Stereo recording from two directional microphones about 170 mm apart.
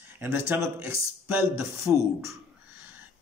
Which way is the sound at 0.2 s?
15° right (ahead or behind).